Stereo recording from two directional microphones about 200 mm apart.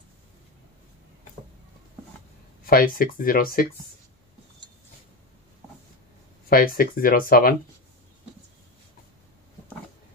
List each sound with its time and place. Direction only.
2.6 s speech: 45° left (ahead or behind)
6.5 s speech: 45° left (ahead or behind)